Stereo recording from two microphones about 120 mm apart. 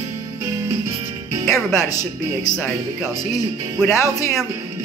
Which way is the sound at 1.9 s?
30° left (ahead or behind).